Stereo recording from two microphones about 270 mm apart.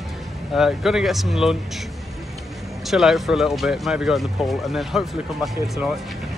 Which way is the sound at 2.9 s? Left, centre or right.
Centre.